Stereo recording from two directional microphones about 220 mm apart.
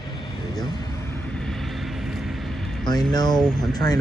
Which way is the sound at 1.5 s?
Centre (ahead or behind).